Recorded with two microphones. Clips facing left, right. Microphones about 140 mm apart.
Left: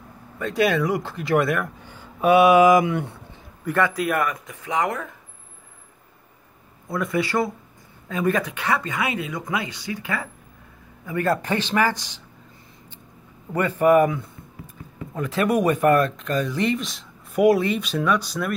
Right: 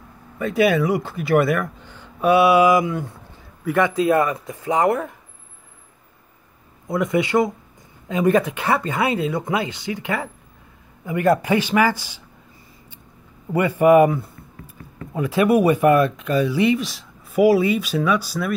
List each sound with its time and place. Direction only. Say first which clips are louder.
0.4 s speech: right 3 dB; 5° right (ahead or behind)
1.8 s a sound: right 1 dB; 10° left (ahead or behind)
2.4 s speech: left 1 dB; 45° left (ahead or behind)
2.8 s speech: left 1 dB; 70° left (ahead or behind)
3.6 s speech: right 4 dB; 15° right (ahead or behind)
6.9 s speech: right 4 dB; 20° right (ahead or behind)
13.5 s speech: right 3 dB; 10° right (ahead or behind)